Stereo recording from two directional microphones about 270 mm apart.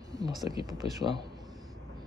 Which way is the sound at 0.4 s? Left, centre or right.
Centre.